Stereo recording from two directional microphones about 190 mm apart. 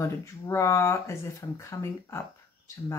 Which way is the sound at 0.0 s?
15° left (ahead or behind).